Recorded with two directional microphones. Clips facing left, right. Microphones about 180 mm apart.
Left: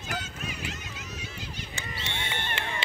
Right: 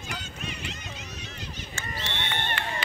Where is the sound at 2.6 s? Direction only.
25° left (ahead or behind).